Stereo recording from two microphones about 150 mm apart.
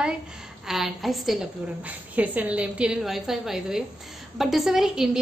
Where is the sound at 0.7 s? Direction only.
Centre (ahead or behind).